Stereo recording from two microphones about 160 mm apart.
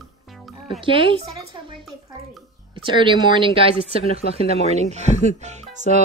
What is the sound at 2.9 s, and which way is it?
Speech, 30° right (ahead or behind).